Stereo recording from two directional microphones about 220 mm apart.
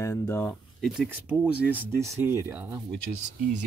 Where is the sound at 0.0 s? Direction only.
10° left (ahead or behind).